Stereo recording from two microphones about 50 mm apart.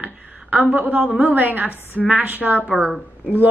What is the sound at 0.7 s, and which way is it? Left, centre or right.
A woman's voice, right.